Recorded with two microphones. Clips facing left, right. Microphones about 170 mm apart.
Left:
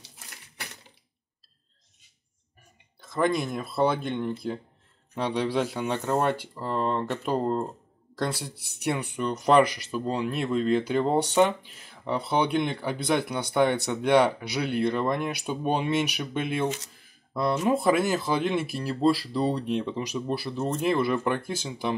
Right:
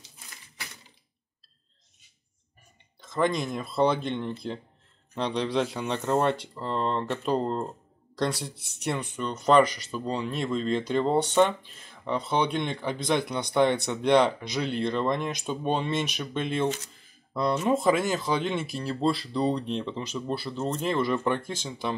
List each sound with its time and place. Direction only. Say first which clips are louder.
3.0 s speech: left 1 dB; 5° left (ahead or behind)
8.5 s speech: left 1 dB; 65° left (ahead or behind)
8.8 s speech: left 2 dB; 10° left (ahead or behind)